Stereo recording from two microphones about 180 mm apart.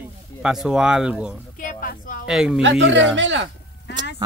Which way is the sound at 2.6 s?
90° right.